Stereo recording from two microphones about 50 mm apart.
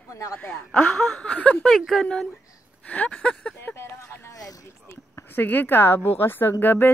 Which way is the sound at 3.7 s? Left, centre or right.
Left.